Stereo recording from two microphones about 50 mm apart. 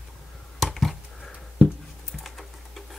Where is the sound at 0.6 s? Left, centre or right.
Centre.